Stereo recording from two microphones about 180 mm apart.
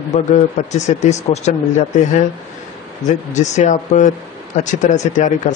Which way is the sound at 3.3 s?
40° left (ahead or behind).